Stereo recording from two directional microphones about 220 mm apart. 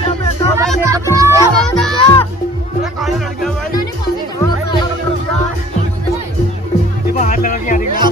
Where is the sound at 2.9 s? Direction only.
Centre (ahead or behind).